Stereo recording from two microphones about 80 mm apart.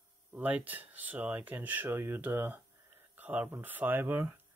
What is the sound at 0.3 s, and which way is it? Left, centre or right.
Speech, centre.